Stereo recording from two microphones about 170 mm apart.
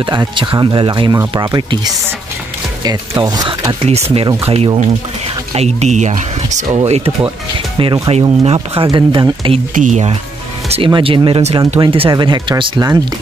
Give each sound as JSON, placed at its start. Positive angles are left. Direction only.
{"t": 0.0, "sound": "speech", "side_deg": -25}
{"t": 7.8, "sound": "speech", "side_deg": -20}
{"t": 8.1, "sound": "speech", "side_deg": -40}
{"t": 9.8, "sound": "speech", "side_deg": -45}
{"t": 10.7, "sound": "speech", "side_deg": -30}